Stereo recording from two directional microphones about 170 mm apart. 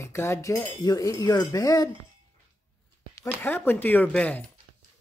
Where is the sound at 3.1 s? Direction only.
15° left (ahead or behind).